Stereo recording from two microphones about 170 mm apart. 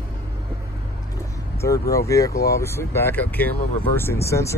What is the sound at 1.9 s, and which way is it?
Speech, 20° left (ahead or behind).